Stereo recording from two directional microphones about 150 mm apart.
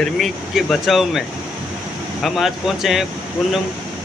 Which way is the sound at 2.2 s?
Centre (ahead or behind).